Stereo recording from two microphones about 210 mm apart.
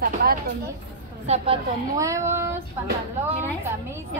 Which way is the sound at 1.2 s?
30° right (ahead or behind).